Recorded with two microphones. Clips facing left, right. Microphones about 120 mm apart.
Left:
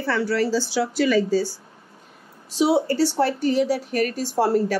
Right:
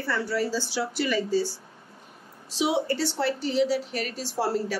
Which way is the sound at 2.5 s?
40° left (ahead or behind).